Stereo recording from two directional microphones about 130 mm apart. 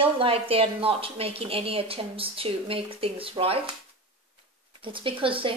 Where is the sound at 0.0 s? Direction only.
45° right (ahead or behind).